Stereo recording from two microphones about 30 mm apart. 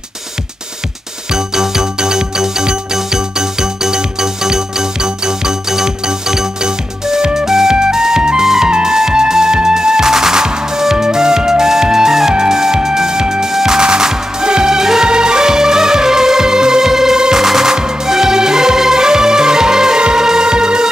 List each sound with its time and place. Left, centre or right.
1.3 s music: centre
17.7 s music: right